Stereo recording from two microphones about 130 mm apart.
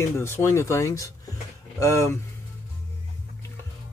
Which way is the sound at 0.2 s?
20° left (ahead or behind).